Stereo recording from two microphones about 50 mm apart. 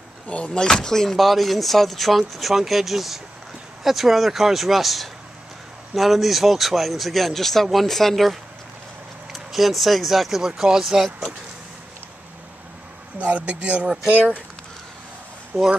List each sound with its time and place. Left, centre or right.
0.3 s speech: centre
13.2 s speech: right
15.5 s speech: right